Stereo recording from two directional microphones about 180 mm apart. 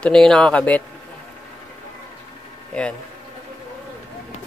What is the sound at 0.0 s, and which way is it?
Speech, 5° left (ahead or behind).